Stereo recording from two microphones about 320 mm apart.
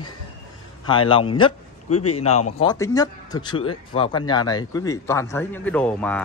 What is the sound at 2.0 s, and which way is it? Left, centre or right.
Speech, left.